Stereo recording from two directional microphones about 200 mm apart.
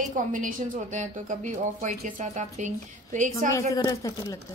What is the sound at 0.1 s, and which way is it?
A woman's voice, 40° right (ahead or behind).